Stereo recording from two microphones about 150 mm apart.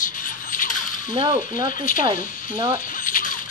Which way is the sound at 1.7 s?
65° left (ahead or behind).